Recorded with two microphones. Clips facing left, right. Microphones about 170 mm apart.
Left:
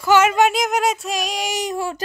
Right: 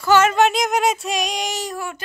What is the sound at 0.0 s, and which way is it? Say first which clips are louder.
A child's voice: even; 15° left (ahead or behind).